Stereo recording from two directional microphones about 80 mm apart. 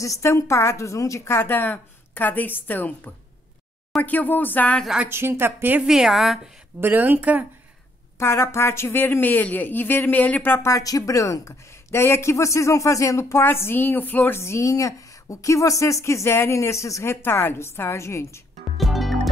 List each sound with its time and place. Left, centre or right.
0.0 s a woman's voice: left; by 4.8 s centre
5.0 s a woman's voice: right
5.9 s a woman's voice: centre
6.8 s a woman's voice: right
8.2 s a woman's voice: left
10.7 s a woman's voice: left
14.4 s a woman's voice: left
18.8 s music: centre